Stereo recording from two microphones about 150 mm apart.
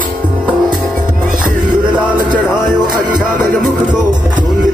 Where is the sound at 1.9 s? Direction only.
10° right (ahead or behind).